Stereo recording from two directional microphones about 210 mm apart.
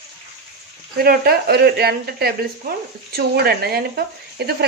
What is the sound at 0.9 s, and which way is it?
Speech, 45° right (ahead or behind).